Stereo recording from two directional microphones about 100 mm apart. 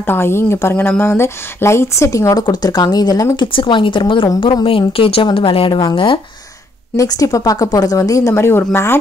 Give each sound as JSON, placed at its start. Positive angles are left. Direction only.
{"t": 0.0, "sound": "speech", "side_deg": 25}
{"t": 2.4, "sound": "a woman's voice", "side_deg": 40}
{"t": 3.3, "sound": "a woman's voice", "side_deg": 55}
{"t": 7.0, "sound": "a woman's voice", "side_deg": 35}